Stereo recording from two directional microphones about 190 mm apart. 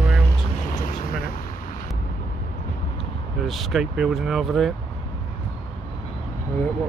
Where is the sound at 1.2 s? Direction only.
50° left (ahead or behind).